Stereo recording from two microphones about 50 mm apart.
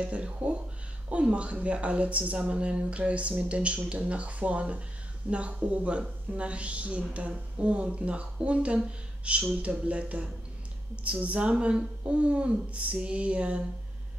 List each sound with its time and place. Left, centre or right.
0.0 s speech: right